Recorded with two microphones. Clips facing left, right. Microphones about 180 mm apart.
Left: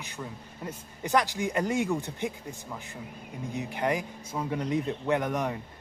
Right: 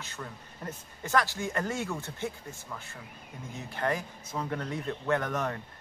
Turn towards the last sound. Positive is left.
turn(degrees=15)  # may be behind; listen again after turning